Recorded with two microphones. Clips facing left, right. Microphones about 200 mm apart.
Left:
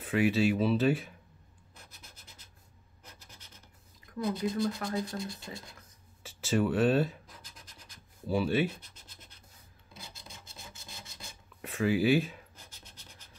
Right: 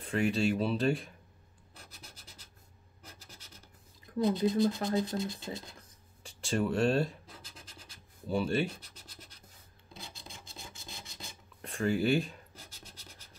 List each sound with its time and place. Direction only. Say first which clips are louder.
0.0 s speech: left 3 dB; 5° left (ahead or behind)
1.8 s rub: right 2 dB; 30° right (ahead or behind)
3.0 s scratch: right 1 dB; 30° right (ahead or behind)
4.2 s speech: right 4 dB; 30° right (ahead or behind)
6.2 s speech: left 3 dB; centre (ahead or behind)
7.2 s scratch: right 2 dB; 25° right (ahead or behind)
8.3 s speech: left 2 dB; centre (ahead or behind)
8.6 s scratch: left 4 dB; 35° right (ahead or behind)
11.6 s speech: left 2 dB; 5° left (ahead or behind)